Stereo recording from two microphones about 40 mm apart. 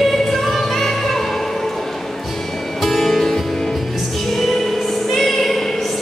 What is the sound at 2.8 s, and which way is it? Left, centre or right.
Music, centre.